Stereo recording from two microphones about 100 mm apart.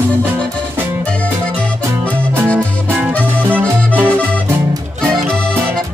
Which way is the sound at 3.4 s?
15° right (ahead or behind).